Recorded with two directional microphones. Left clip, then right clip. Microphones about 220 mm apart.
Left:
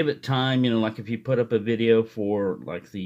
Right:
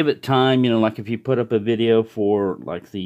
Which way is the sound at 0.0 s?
40° right (ahead or behind).